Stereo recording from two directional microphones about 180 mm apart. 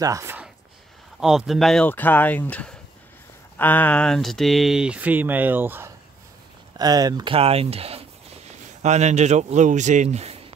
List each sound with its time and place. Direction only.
0.0 s speech: 15° right (ahead or behind)
1.2 s speech: 5° right (ahead or behind)
6.8 s speech: 20° right (ahead or behind)
7.3 s speech: 35° right (ahead or behind)